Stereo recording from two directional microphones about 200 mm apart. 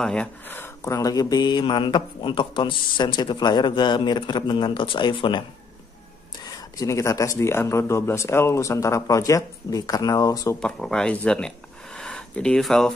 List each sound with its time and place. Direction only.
0.0 s speech: 5° left (ahead or behind); by 5.4 s 25° left (ahead or behind)
6.4 s speech: 15° left (ahead or behind)
10.6 s speech: 5° left (ahead or behind)